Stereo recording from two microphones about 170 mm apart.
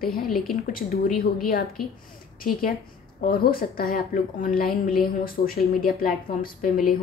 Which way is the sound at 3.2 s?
60° left (ahead or behind).